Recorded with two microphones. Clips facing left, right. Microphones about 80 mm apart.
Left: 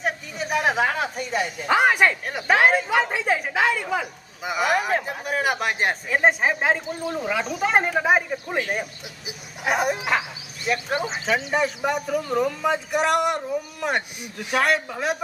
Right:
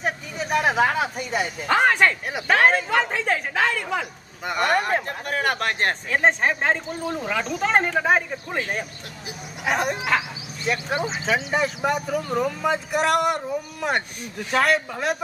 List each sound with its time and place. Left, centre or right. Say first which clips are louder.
0.0 s speech: even; centre
1.7 s speech: even; centre
9.7 s speech: even; centre
11.2 s speech: left 1 dB; centre
14.2 s speech: right 1 dB; centre
14.6 s speech: right 1 dB; centre